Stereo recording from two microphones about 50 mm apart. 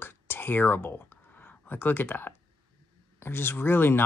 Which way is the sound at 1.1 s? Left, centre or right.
Left.